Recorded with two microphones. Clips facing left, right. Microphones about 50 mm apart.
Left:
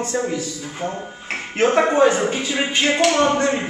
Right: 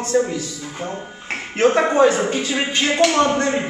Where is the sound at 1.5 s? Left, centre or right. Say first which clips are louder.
Right 1 dB; centre.